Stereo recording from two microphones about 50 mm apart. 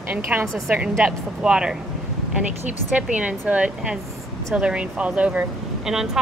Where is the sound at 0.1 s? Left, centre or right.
Right.